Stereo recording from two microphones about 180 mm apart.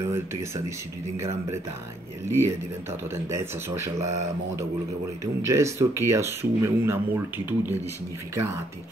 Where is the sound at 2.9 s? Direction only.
15° right (ahead or behind).